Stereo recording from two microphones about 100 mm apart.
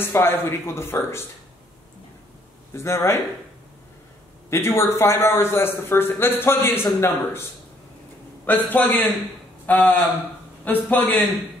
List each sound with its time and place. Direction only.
0.0 s a man's voice: 25° left (ahead or behind)
2.7 s a man's voice: 25° left (ahead or behind)
4.5 s a man's voice: 25° left (ahead or behind)
8.5 s a man's voice: 20° left (ahead or behind)